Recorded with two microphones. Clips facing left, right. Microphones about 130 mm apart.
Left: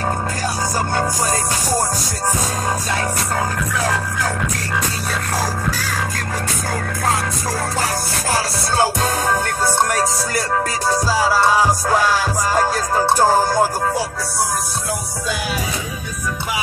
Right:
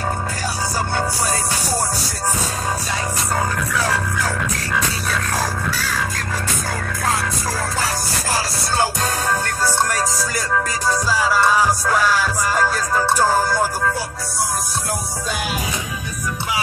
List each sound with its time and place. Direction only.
10.9 s music: 30° left (ahead or behind)
12.5 s music: 40° left (ahead or behind)
13.3 s music: 20° left (ahead or behind)